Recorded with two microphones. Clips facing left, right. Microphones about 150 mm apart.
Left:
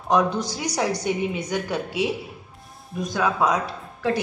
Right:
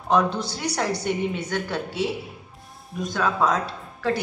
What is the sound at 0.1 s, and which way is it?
A woman's voice, 15° left (ahead or behind).